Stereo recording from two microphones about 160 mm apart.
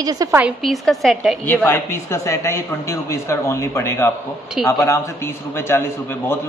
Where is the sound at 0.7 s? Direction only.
Centre (ahead or behind).